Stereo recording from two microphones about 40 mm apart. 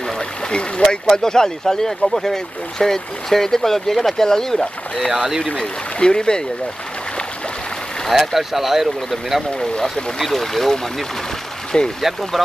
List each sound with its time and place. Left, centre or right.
0.5 s speech: left
0.8 s speech: centre
5.1 s speech: centre
5.6 s speech: centre
8.1 s speech: centre
9.6 s speech: centre
10.1 s speech: centre
11.7 s speech: left